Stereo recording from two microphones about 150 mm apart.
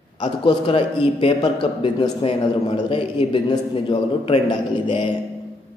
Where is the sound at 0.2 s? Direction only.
35° left (ahead or behind).